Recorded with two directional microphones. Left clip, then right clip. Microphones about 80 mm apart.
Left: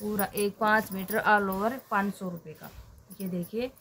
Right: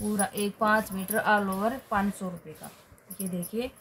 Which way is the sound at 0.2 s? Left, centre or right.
Left.